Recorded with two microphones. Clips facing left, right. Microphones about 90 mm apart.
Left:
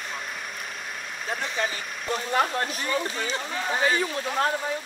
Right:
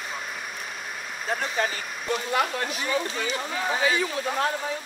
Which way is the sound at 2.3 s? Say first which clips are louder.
Left 3 dB; 40° left (ahead or behind).